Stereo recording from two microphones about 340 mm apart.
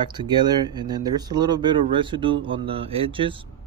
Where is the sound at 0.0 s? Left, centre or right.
Centre.